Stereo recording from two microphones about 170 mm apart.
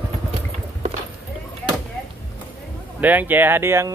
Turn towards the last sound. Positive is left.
turn(degrees=-15)  # may be behind; listen again after turning